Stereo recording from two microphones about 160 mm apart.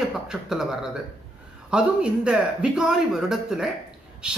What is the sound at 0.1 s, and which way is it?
Speech, 5° right (ahead or behind).